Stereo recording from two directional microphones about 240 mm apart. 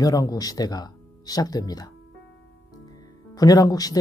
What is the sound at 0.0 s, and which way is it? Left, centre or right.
Speech, centre.